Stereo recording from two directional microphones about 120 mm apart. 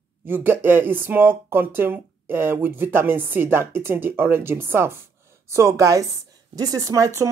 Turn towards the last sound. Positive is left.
turn(degrees=-25)  # may be behind; listen again after turning